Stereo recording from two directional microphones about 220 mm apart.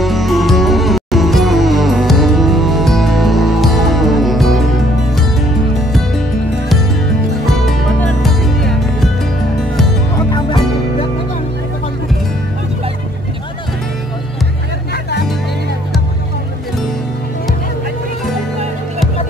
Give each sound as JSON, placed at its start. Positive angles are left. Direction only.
{"t": 0.0, "sound": "music", "side_deg": 0}
{"t": 7.4, "sound": "music", "side_deg": 0}
{"t": 10.1, "sound": "music", "side_deg": 20}